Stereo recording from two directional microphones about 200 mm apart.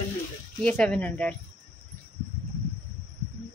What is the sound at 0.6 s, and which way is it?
Speech, 5° left (ahead or behind).